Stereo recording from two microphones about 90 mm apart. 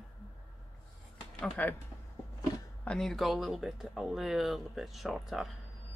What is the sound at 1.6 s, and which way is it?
Speech, 15° left (ahead or behind).